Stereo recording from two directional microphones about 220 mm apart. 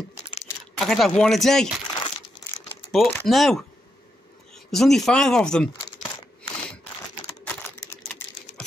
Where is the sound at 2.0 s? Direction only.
25° left (ahead or behind).